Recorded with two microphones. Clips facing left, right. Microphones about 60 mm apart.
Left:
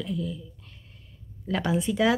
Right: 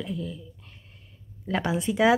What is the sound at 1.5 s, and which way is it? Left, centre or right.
Speech, centre.